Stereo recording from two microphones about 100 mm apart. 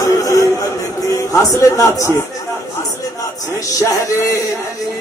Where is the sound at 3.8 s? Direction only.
30° left (ahead or behind).